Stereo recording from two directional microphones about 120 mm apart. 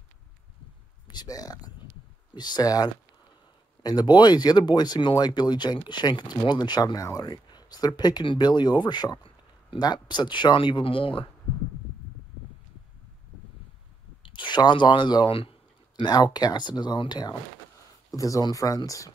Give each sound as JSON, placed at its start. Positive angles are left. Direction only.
{"t": 1.0, "sound": "speech", "side_deg": 35}
{"t": 14.2, "sound": "speech", "side_deg": 40}
{"t": 16.0, "sound": "speech", "side_deg": 35}